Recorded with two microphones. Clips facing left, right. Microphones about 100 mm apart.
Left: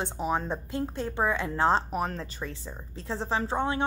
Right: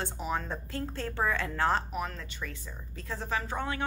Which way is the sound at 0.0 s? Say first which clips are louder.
Left 4 dB; 20° left (ahead or behind).